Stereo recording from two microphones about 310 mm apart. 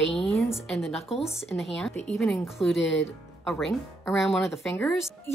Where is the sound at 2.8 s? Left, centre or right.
Left.